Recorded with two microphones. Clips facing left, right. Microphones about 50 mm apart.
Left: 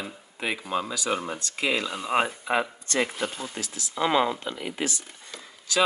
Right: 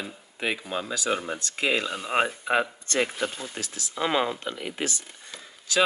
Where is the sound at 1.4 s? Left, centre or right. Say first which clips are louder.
Right 1 dB; right.